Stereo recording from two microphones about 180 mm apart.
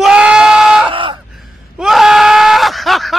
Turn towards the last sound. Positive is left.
turn(degrees=0)  # may be behind; listen again after turning